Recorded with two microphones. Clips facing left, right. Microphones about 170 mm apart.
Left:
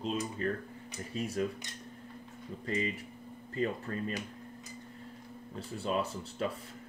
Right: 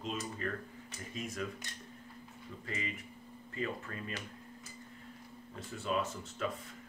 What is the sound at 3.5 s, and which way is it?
Speech, 35° left (ahead or behind).